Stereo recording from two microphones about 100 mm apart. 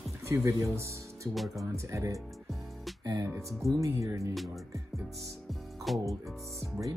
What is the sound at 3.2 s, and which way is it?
Speech, 30° right (ahead or behind).